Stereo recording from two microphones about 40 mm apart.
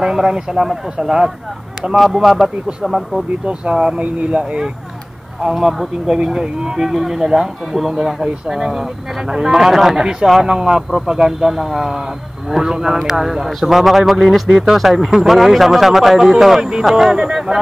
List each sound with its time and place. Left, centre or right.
0.0 s speech: centre
2.0 s speech: centre
3.9 s speech: right
5.4 s speech: centre